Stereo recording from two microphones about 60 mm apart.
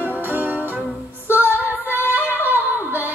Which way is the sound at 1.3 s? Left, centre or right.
Right.